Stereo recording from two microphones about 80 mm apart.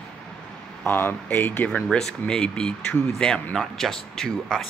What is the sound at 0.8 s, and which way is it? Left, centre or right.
Speech, left.